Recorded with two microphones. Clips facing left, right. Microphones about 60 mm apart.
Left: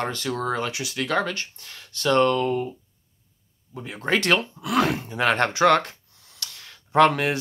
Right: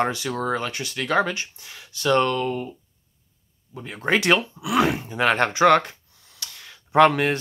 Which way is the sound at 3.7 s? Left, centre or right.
Centre.